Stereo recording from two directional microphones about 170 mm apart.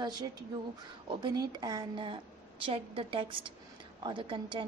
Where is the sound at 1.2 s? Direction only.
25° right (ahead or behind).